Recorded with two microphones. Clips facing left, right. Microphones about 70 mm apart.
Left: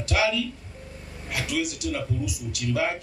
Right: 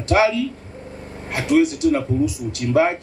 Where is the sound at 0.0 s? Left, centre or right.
Right.